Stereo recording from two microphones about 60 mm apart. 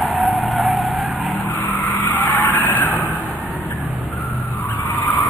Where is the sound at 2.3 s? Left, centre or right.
Left.